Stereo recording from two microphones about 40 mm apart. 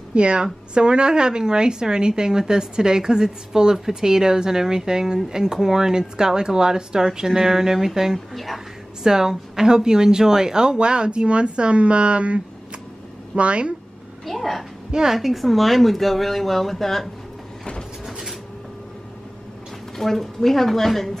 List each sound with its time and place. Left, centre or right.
0.1 s a woman's voice: right
13.4 s a woman's voice: right
14.2 s a child's voice: centre
14.9 s a woman's voice: centre
15.1 s speech: centre
18.0 s a sound: centre
20.0 s speech: centre